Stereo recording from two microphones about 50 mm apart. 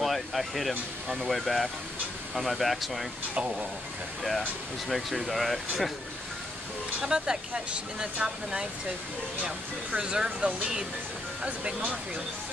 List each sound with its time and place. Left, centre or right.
0.0 s speech: centre
3.3 s speech: right
4.8 s speech: centre
7.0 s speech: centre
9.9 s speech: centre